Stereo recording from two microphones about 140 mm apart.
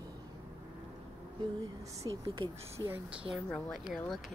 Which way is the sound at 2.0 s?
25° right (ahead or behind).